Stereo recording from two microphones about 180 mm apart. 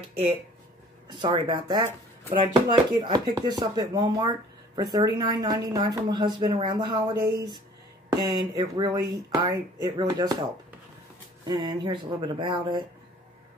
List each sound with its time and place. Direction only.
1.0 s speech: 25° right (ahead or behind)
11.4 s speech: 25° right (ahead or behind)